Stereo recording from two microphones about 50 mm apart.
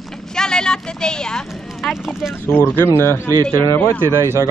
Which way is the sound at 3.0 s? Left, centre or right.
Left.